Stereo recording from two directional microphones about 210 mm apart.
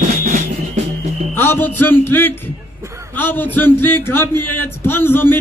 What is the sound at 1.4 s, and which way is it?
A man's voice, 10° left (ahead or behind).